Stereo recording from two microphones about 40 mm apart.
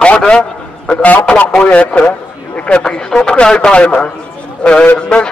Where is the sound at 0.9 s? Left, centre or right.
Left.